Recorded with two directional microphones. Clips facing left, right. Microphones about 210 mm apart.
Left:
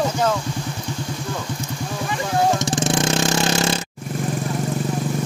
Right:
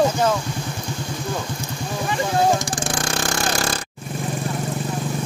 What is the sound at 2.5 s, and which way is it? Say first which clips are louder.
Vehicle: left 4 dB; 20° left (ahead or behind).